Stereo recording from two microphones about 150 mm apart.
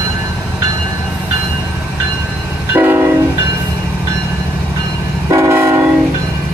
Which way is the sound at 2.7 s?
15° right (ahead or behind).